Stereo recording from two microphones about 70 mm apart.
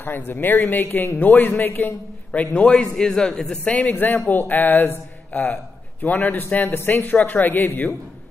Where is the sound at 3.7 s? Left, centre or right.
Left.